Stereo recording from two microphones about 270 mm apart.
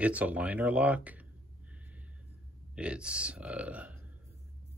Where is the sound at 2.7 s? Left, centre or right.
Centre.